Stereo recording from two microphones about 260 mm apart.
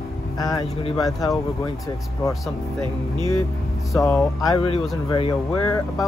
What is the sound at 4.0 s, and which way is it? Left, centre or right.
Speech, centre.